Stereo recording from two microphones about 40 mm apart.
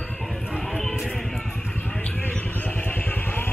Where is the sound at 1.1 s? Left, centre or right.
Centre.